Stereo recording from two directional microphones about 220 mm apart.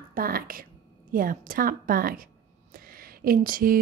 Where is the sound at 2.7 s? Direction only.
40° right (ahead or behind).